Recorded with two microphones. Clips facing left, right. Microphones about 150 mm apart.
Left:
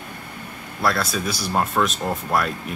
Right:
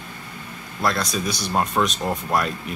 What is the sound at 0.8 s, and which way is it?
Speech, 5° left (ahead or behind).